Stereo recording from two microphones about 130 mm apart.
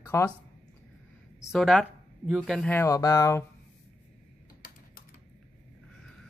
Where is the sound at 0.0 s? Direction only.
20° left (ahead or behind).